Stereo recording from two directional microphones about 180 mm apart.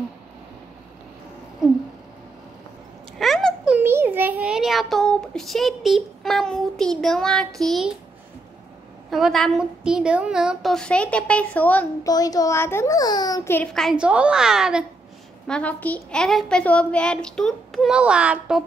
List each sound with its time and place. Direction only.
3.2 s a sound: centre (ahead or behind)
3.7 s a child's voice: 15° right (ahead or behind)
9.1 s a woman's voice: centre (ahead or behind)
12.1 s a child's voice: 20° left (ahead or behind)
13.7 s a woman's voice: centre (ahead or behind)
15.4 s a woman's voice: 5° left (ahead or behind)